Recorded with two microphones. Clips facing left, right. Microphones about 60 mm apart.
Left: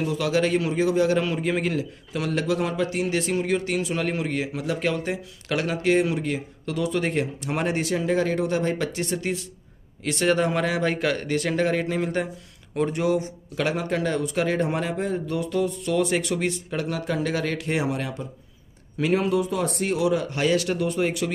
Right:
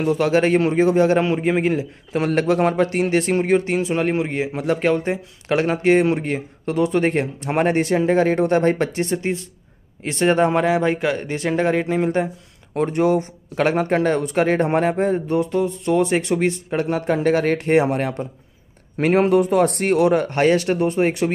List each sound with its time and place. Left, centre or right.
0.0 s a man's voice: right